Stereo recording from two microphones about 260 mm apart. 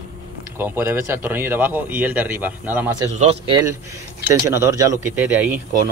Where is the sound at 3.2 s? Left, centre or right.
Right.